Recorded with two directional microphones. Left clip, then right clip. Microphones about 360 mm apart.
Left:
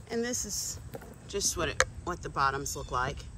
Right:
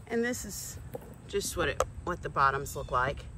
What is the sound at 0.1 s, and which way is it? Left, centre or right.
Speech, centre.